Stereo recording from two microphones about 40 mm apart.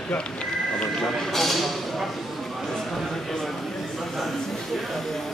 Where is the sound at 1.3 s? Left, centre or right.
Centre.